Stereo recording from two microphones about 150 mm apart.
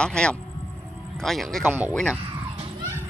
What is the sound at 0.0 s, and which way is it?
Speech, 5° left (ahead or behind).